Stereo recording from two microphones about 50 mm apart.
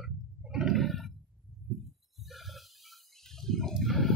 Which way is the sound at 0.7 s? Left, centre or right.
Centre.